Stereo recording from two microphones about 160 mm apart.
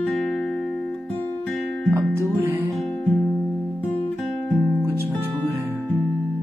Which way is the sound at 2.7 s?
5° left (ahead or behind).